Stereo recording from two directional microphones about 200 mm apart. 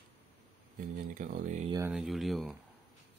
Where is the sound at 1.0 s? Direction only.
40° right (ahead or behind).